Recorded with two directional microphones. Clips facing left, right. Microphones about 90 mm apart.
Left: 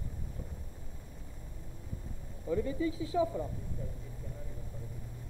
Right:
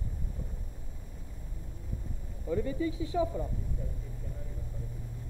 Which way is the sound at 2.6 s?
5° left (ahead or behind).